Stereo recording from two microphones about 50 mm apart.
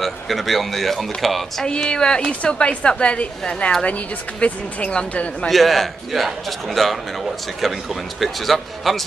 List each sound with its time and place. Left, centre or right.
0.0 s a man's voice: centre
1.7 s a woman's voice: centre
5.5 s a man's voice: centre